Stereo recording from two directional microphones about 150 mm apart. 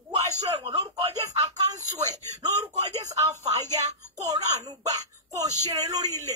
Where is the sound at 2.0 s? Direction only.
25° right (ahead or behind).